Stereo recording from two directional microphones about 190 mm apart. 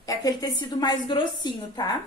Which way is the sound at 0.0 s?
20° left (ahead or behind).